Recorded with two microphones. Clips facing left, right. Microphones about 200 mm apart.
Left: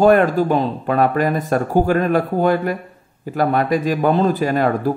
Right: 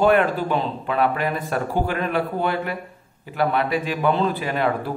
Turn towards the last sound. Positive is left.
turn(degrees=45)  # may be behind; listen again after turning